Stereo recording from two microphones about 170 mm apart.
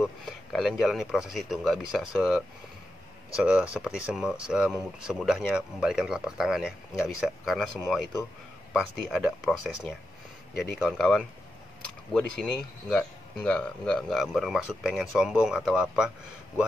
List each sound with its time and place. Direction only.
0.0 s speech: centre (ahead or behind)